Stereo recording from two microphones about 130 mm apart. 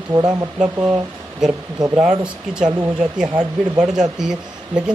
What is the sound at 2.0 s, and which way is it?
Speech, 10° right (ahead or behind).